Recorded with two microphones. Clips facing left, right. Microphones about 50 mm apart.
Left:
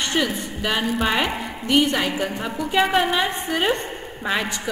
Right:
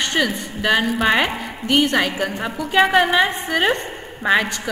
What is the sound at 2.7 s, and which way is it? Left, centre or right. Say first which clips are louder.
Speech: right 4 dB; centre.